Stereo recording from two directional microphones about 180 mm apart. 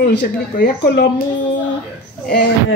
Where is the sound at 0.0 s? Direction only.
60° left (ahead or behind).